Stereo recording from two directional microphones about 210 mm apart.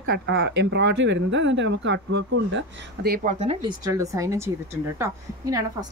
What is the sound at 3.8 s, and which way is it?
Speech, 15° right (ahead or behind).